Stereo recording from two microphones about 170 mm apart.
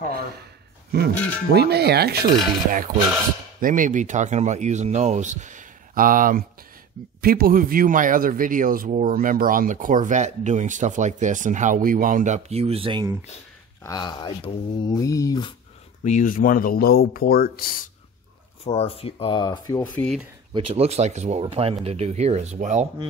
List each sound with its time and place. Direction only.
0.9 s speech: 70° right (ahead or behind)
2.7 s speech: 50° right (ahead or behind); by 13.1 s 30° right (ahead or behind)
13.8 s speech: 25° left (ahead or behind)
16.0 s speech: 45° left (ahead or behind)
18.6 s speech: 35° left (ahead or behind)
19.8 s speech: 10° left (ahead or behind)
20.5 s speech: 35° right (ahead or behind)